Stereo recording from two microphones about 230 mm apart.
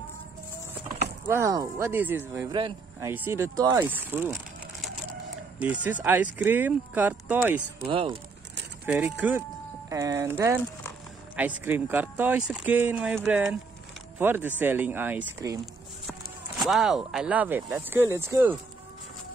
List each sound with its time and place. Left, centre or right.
1.3 s speech: centre
5.9 s speech: centre
7.8 s speech: right
8.8 s speech: centre